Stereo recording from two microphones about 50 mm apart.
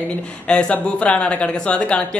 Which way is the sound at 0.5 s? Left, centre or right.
Left.